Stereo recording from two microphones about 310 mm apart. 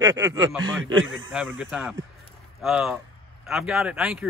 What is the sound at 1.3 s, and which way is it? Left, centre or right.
Speech, centre.